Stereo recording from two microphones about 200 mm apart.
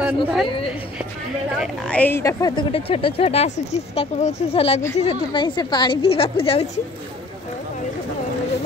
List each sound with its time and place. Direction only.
0.0 s a woman's voice: 5° right (ahead or behind)
0.5 s speech: 30° left (ahead or behind)
1.6 s speech: 5° left (ahead or behind); by 6.7 s 30° left (ahead or behind)